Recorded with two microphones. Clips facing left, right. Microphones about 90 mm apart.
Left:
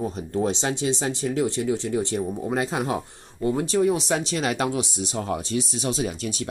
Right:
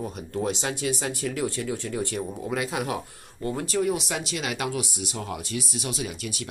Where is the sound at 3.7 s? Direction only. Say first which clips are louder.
Left 3 dB; 30° left (ahead or behind).